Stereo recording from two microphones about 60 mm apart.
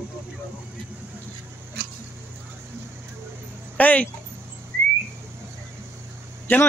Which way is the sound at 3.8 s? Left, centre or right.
Left.